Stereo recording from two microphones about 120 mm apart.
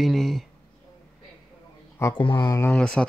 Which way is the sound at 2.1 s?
40° left (ahead or behind).